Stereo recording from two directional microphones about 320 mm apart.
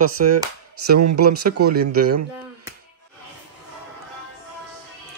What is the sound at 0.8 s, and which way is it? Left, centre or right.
Speech, right.